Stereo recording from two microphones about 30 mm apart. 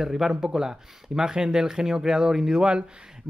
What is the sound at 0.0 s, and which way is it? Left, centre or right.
Speech, centre.